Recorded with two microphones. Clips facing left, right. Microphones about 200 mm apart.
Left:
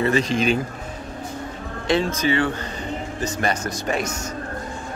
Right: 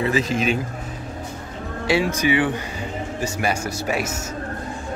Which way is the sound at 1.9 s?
10° right (ahead or behind).